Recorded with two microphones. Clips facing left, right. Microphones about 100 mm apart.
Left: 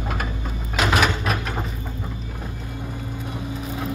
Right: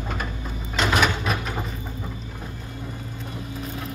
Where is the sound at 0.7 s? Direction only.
Centre (ahead or behind).